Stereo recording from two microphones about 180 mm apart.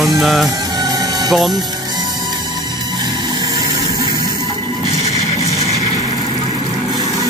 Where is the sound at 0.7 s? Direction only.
20° right (ahead or behind).